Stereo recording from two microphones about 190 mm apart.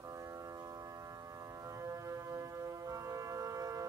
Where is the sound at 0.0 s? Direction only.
15° right (ahead or behind).